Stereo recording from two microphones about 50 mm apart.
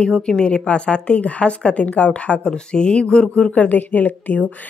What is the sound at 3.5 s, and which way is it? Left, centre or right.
A woman's voice, left.